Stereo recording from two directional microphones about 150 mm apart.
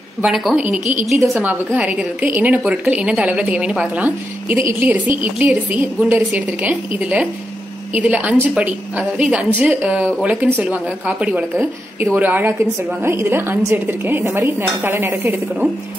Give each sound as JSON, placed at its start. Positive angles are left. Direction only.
{"t": 0.2, "sound": "a woman's voice", "side_deg": 0}